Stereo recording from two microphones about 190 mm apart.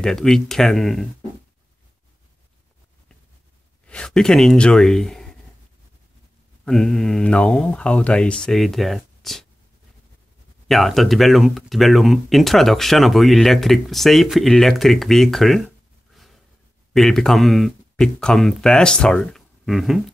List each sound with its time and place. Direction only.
0.0 s speech: centre (ahead or behind)
3.8 s speech: 5° left (ahead or behind)
6.6 s speech: 5° left (ahead or behind)
10.7 s speech: centre (ahead or behind)
16.9 s speech: centre (ahead or behind)